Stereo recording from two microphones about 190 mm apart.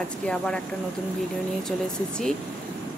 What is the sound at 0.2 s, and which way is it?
Speech, 5° left (ahead or behind).